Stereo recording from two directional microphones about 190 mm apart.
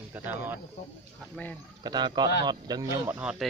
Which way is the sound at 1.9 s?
25° right (ahead or behind).